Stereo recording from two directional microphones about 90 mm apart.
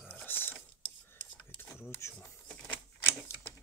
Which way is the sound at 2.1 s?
15° left (ahead or behind).